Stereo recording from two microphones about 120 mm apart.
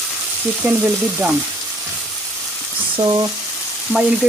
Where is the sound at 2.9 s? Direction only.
35° right (ahead or behind).